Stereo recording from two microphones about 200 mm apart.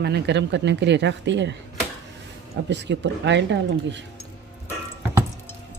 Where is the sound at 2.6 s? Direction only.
60° right (ahead or behind).